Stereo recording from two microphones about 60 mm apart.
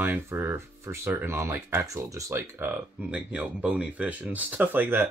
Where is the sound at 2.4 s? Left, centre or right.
Right.